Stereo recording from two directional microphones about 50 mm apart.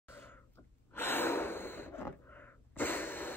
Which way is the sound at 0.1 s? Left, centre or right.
Left.